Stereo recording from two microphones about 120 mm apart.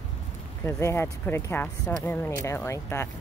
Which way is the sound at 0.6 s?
20° left (ahead or behind).